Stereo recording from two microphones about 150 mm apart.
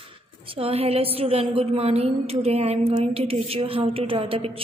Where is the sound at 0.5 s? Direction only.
40° right (ahead or behind).